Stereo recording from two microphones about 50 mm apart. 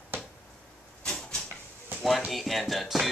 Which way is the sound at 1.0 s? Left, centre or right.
Centre.